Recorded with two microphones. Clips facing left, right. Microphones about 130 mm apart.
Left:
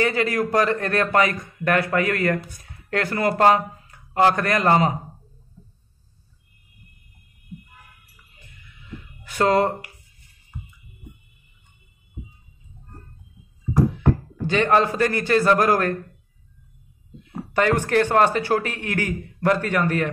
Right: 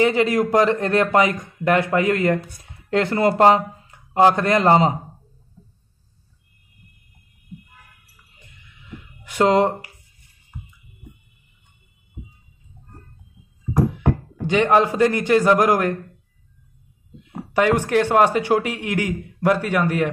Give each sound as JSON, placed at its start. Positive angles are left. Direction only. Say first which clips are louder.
{"t": 0.0, "sound": "speech", "louder": "right 4 dB", "side_deg": -20}
{"t": 9.2, "sound": "speech", "louder": "right 2 dB", "side_deg": -15}
{"t": 13.9, "sound": "speech", "louder": "even", "side_deg": -15}
{"t": 17.2, "sound": "speech", "louder": "right 2 dB", "side_deg": -15}